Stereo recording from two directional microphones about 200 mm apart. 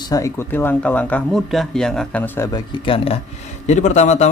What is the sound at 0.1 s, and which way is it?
Speech, 15° left (ahead or behind).